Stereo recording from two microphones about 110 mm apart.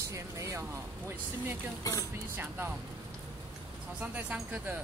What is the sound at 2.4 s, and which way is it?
Speech, 20° right (ahead or behind).